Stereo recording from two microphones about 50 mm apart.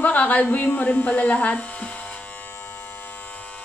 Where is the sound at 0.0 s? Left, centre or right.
Left.